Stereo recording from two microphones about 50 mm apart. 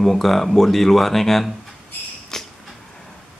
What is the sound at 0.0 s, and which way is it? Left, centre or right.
Speech, centre.